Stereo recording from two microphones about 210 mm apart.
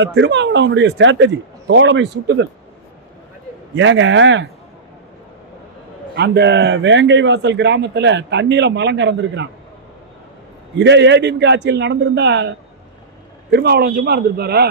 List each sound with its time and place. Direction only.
0.0 s a man's voice: 60° right (ahead or behind)
3.7 s a man's voice: 65° right (ahead or behind)
6.1 s a man's voice: 55° right (ahead or behind)
10.8 s a man's voice: 55° right (ahead or behind)